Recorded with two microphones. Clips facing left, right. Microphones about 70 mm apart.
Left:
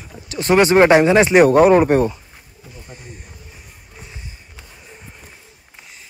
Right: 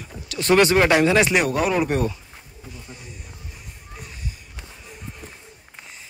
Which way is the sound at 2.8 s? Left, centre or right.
Left.